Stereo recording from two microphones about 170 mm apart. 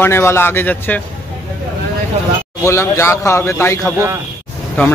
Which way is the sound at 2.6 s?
15° left (ahead or behind).